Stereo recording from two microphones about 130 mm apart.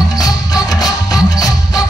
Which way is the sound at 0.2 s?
30° left (ahead or behind).